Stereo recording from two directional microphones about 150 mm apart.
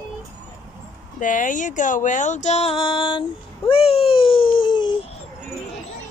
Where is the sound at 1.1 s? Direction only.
60° left (ahead or behind); by 3.2 s 35° left (ahead or behind).